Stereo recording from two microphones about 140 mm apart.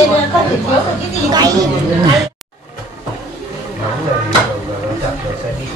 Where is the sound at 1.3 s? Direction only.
25° right (ahead or behind).